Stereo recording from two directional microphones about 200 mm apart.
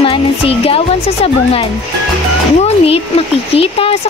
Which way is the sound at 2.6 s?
30° left (ahead or behind).